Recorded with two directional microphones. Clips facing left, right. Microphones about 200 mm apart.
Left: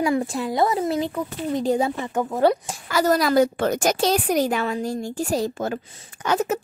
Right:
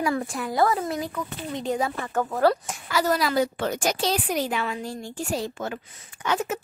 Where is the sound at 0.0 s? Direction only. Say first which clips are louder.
Left 4 dB; 25° left (ahead or behind).